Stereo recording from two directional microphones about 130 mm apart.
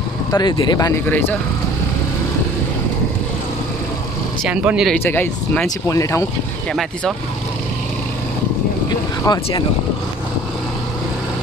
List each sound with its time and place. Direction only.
0.3 s speech: 30° left (ahead or behind)
1.0 s speech: 15° left (ahead or behind)
4.5 s speech: 5° right (ahead or behind)
5.0 s speech: 15° left (ahead or behind)
6.7 s speech: centre (ahead or behind)
9.2 s speech: 35° left (ahead or behind)